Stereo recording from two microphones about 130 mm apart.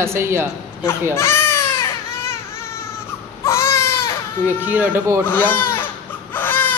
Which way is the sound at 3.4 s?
20° left (ahead or behind).